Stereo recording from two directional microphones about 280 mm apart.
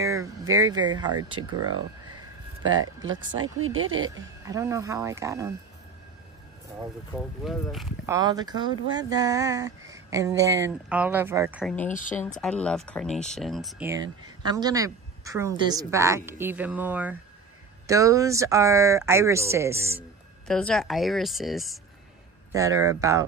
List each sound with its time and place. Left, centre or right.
0.0 s speech: centre
2.8 s speech: right
4.5 s speech: centre
7.2 s speech: centre
8.1 s speech: centre
12.4 s speech: centre
20.0 s speech: centre
22.5 s speech: centre